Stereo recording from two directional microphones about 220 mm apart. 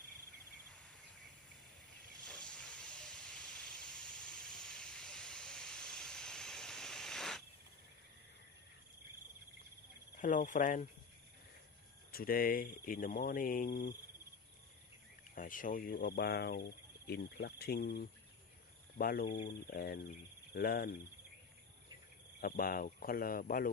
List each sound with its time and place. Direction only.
2.1 s hiss: 5° left (ahead or behind)
10.1 s speech: 35° left (ahead or behind)
12.1 s speech: 40° left (ahead or behind)
15.3 s speech: 40° left (ahead or behind)
22.4 s speech: 40° left (ahead or behind)